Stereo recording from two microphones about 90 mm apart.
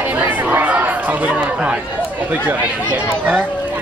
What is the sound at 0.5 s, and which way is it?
Speech, 20° right (ahead or behind).